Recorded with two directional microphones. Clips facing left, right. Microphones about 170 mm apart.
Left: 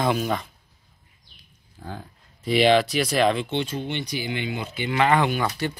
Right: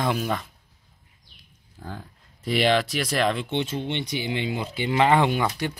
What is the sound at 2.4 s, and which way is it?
Speech, centre (ahead or behind).